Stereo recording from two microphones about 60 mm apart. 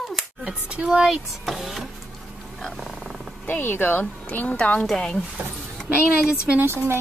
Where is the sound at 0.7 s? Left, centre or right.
Centre.